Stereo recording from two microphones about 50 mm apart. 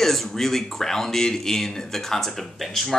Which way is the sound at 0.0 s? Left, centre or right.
Centre.